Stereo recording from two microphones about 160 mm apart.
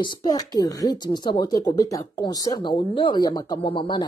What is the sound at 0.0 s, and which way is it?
Speech, 25° left (ahead or behind).